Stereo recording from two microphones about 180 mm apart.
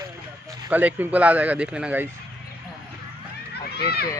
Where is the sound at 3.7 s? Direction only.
60° left (ahead or behind).